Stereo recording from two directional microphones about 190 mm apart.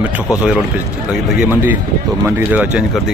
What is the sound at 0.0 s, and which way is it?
Speech, 5° right (ahead or behind).